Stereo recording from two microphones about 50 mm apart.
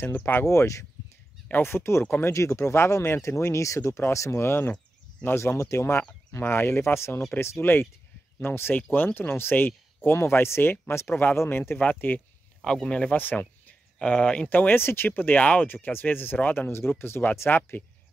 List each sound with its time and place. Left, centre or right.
0.1 s speech: left
0.5 s speech: left
1.6 s speech: left
4.1 s speech: left
6.4 s speech: left
7.6 s speech: left
11.3 s speech: left
11.8 s speech: left
12.6 s speech: centre
13.1 s speech: left
14.0 s speech: left
14.5 s speech: left
14.8 s speech: left